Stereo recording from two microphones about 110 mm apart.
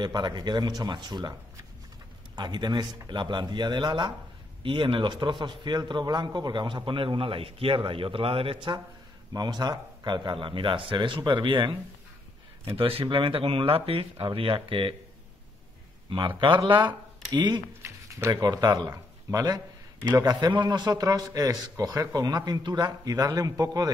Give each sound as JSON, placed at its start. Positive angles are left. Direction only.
{"t": 0.0, "sound": "speech", "side_deg": -40}
{"t": 2.3, "sound": "a man's voice", "side_deg": -45}
{"t": 9.3, "sound": "a man's voice", "side_deg": -40}
{"t": 12.7, "sound": "speech", "side_deg": -55}
{"t": 16.1, "sound": "a man's voice", "side_deg": -50}